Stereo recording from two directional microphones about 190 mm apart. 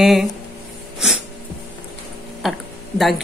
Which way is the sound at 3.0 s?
Centre (ahead or behind).